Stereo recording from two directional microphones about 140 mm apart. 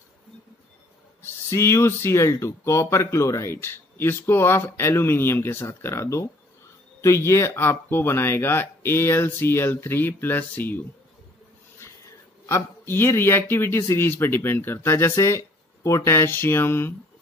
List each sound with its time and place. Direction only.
1.5 s speech: 20° left (ahead or behind)
11.8 s speech: 20° left (ahead or behind)